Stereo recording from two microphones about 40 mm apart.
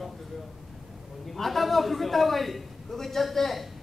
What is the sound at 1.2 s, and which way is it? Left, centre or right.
A man's voice, centre.